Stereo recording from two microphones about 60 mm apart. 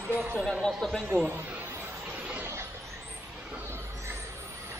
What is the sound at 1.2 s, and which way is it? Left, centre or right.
Speech, right.